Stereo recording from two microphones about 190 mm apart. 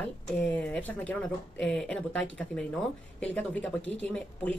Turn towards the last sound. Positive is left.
turn(degrees=5)  # may be behind; listen again after turning